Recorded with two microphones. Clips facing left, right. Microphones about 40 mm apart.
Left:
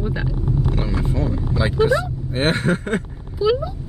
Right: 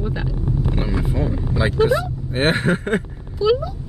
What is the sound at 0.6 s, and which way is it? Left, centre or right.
Vehicle, centre.